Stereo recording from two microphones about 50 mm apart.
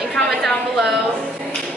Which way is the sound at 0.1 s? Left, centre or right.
Centre.